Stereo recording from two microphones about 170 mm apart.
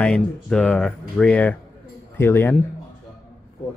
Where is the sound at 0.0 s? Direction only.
5° left (ahead or behind).